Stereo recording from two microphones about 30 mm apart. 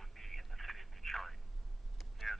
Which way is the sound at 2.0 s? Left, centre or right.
Centre.